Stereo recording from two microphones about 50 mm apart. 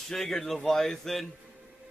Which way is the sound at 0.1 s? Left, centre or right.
Centre.